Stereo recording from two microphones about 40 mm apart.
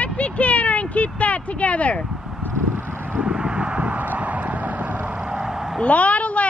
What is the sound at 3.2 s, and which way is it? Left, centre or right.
Vehicle, right.